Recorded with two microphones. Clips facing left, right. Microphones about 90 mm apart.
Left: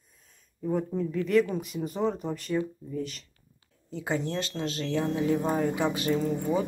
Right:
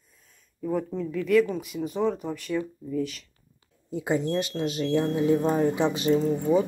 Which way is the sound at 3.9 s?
15° right (ahead or behind).